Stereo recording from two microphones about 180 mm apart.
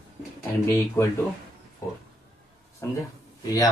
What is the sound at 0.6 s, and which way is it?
Speech, 15° left (ahead or behind).